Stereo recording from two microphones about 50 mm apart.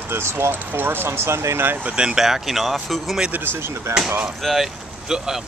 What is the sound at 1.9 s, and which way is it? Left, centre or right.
Speech, centre.